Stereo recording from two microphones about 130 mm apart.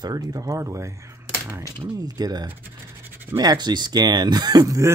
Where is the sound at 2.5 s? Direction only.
15° right (ahead or behind).